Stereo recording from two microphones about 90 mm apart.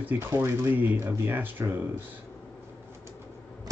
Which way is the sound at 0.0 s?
25° right (ahead or behind).